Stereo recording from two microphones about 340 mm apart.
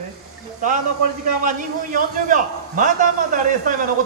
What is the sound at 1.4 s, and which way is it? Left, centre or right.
A man's voice, right.